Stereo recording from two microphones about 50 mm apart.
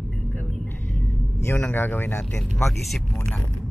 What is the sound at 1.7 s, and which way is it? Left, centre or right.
Speech, left.